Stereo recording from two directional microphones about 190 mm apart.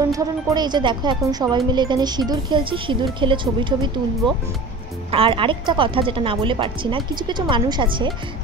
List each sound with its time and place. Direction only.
0.0 s speech: 20° right (ahead or behind)
5.1 s speech: 25° right (ahead or behind)